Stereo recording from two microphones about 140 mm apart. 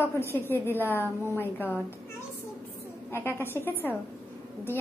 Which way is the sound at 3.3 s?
15° left (ahead or behind).